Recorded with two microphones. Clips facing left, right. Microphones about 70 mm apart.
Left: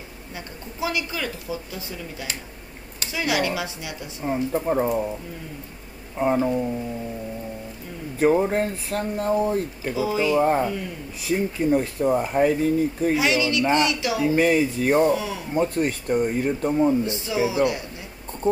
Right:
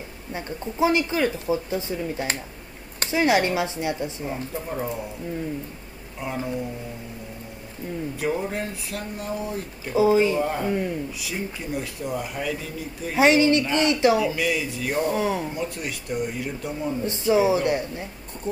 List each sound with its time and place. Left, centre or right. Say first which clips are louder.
0.3 s speech: right 7 dB; right
4.3 s speech: left 7 dB; left
6.1 s speech: left 9 dB; left
8.2 s speech: left 9 dB; left
9.9 s speech: right 5 dB; right
10.3 s speech: left 4 dB; left
13.1 s speech: right 9 dB; right
14.2 s speech: left 6 dB; left
15.1 s speech: right 4 dB; right
15.5 s speech: left 8 dB; left
17.0 s speech: right 4 dB; right